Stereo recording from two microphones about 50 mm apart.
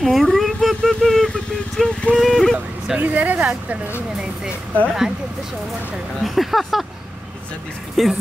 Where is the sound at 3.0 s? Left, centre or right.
Right.